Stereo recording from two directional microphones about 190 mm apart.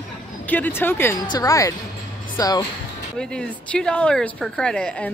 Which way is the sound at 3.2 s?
5° left (ahead or behind).